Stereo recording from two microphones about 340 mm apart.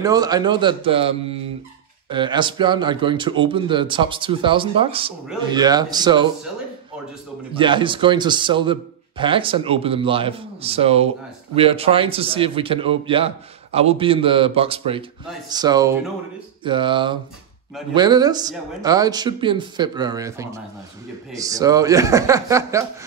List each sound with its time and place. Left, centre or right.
0.0 s a man's voice: centre
7.5 s a man's voice: centre